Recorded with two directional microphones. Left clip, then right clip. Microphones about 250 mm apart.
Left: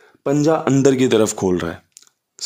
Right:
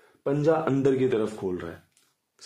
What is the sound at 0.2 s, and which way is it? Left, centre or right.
A man's voice, left.